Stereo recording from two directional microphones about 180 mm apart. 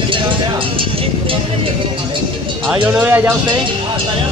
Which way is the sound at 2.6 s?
10° right (ahead or behind).